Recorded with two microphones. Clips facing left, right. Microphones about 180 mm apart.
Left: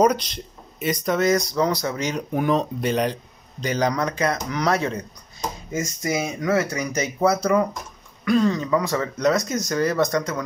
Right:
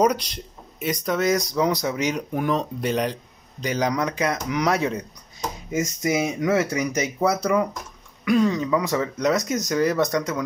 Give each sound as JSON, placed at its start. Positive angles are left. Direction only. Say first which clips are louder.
{"t": 0.7, "sound": "speech", "louder": "left 2 dB", "side_deg": 0}
{"t": 1.2, "sound": "speech", "louder": "left 1 dB", "side_deg": -15}
{"t": 2.3, "sound": "speech", "louder": "left 2 dB", "side_deg": 0}
{"t": 3.6, "sound": "speech", "louder": "left 1 dB", "side_deg": -10}